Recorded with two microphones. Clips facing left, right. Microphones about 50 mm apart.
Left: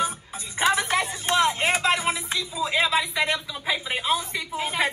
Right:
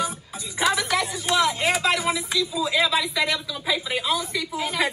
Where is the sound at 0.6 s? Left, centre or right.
Left.